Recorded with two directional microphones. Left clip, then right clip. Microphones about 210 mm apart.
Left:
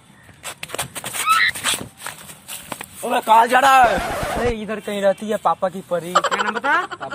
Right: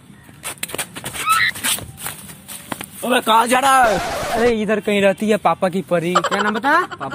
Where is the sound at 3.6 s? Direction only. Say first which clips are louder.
Left 1 dB; 10° right (ahead or behind).